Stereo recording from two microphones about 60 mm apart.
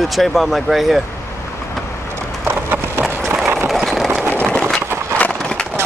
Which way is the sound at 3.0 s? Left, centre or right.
Centre.